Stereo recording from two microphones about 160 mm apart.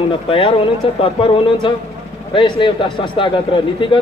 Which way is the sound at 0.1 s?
35° left (ahead or behind).